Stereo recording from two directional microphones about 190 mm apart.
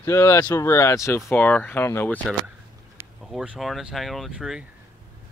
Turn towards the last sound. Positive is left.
turn(degrees=0)  # may be behind; listen again after turning